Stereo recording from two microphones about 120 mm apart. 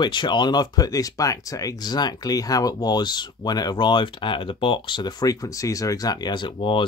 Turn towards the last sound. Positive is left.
turn(degrees=45)  # may be behind; listen again after turning